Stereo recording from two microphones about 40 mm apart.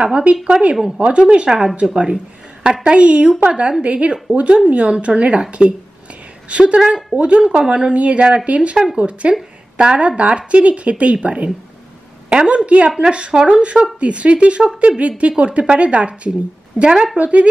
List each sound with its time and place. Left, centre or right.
0.0 s a woman's voice: right
16.8 s a woman's voice: centre
17.2 s a woman's voice: right